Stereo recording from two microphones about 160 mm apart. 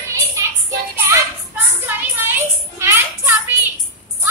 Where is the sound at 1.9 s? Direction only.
15° right (ahead or behind).